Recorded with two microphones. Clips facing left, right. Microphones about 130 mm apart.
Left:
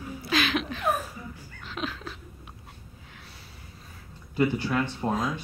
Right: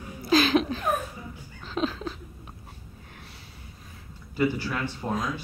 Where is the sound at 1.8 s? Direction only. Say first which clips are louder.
Right 6 dB; 30° right (ahead or behind).